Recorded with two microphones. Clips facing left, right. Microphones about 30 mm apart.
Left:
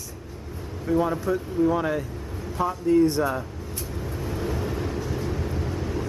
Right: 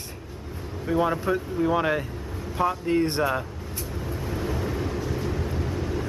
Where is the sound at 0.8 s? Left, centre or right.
Right.